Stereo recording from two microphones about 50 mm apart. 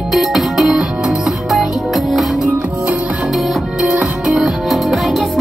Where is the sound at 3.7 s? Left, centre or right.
Centre.